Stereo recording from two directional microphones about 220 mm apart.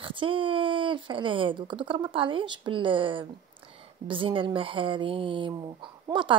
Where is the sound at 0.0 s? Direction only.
25° right (ahead or behind).